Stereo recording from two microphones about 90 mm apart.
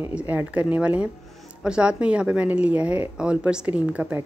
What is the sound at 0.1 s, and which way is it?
Speech, 15° right (ahead or behind).